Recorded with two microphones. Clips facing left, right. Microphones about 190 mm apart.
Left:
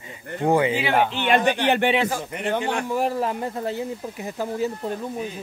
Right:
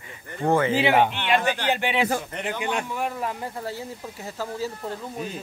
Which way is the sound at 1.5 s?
60° left (ahead or behind).